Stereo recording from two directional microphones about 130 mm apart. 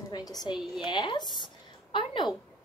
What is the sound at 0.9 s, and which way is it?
Speech, 35° left (ahead or behind).